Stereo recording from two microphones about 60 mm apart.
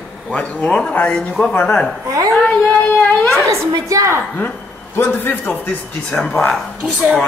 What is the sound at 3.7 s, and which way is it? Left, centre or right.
Speech, right.